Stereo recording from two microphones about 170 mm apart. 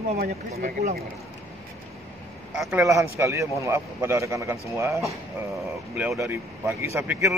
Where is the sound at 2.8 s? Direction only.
20° right (ahead or behind).